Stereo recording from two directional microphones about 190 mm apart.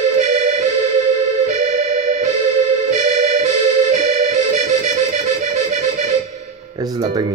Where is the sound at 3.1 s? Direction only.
35° right (ahead or behind).